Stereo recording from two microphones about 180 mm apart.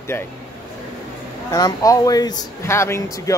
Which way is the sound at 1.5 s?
20° left (ahead or behind).